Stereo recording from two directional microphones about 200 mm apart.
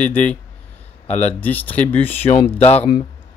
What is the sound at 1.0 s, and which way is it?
Speech, 35° left (ahead or behind).